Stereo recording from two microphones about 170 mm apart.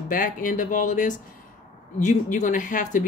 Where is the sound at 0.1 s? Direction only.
50° left (ahead or behind).